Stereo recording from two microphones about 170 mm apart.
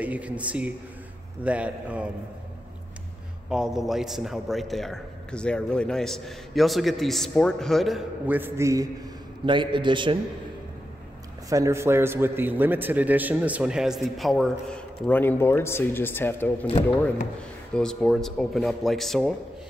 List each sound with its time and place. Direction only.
0.0 s speech: 10° right (ahead or behind)
3.4 s a man's voice: 5° right (ahead or behind)
8.4 s speech: 15° right (ahead or behind)
9.5 s a man's voice: 30° right (ahead or behind)
11.4 s a man's voice: 20° right (ahead or behind); by 16.5 s 10° left (ahead or behind)
17.7 s a man's voice: 5° left (ahead or behind)